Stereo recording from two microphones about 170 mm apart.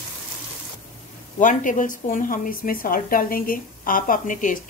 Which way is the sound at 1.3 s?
50° left (ahead or behind).